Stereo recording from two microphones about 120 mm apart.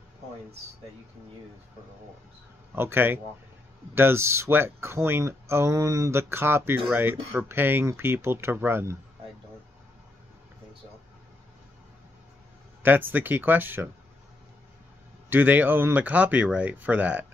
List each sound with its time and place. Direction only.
2.7 s speech: 20° right (ahead or behind)
12.8 s speech: 15° right (ahead or behind)
15.2 s speech: 15° right (ahead or behind)